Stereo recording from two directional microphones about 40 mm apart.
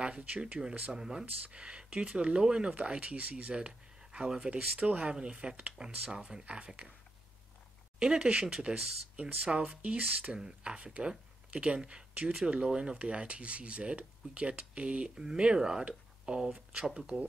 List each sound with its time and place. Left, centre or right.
0.2 s speech: right
0.9 s speech: centre
1.5 s speech: right
2.7 s speech: right
4.5 s speech: right
8.0 s speech: right
9.7 s speech: right; by 17.2 s centre